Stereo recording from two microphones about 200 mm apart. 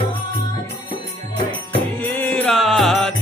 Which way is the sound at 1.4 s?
25° left (ahead or behind).